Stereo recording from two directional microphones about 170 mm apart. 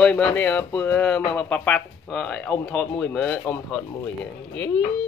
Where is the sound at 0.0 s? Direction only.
5° left (ahead or behind).